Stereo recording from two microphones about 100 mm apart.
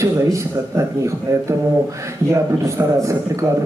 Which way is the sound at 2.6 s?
30° right (ahead or behind).